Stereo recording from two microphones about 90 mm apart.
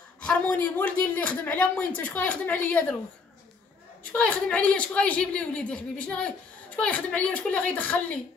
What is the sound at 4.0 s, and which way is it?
A woman's voice, 15° left (ahead or behind).